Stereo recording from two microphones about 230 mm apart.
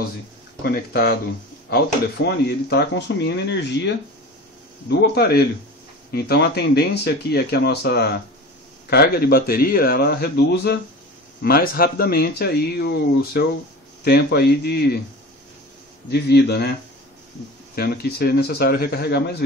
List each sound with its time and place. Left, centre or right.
0.7 s a man's voice: left
16.1 s speech: left
17.7 s speech: left